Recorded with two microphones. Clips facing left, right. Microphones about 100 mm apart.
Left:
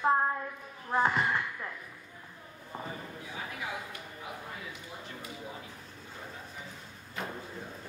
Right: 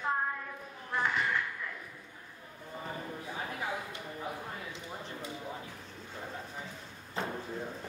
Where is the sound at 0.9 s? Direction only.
40° left (ahead or behind).